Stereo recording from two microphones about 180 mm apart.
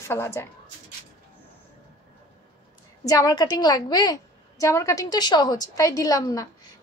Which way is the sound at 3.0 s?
20° left (ahead or behind).